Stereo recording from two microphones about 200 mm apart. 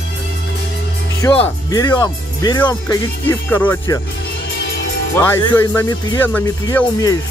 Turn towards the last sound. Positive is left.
turn(degrees=15)  # may be behind; listen again after turning